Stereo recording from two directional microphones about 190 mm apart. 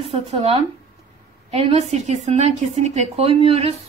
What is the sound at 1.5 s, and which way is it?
A woman's voice, 30° right (ahead or behind).